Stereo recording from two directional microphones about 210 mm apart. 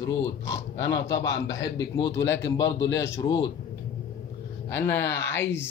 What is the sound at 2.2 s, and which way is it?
Speech, 60° left (ahead or behind).